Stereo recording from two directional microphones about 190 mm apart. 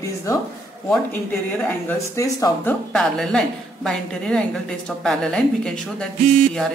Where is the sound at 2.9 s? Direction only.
Centre (ahead or behind).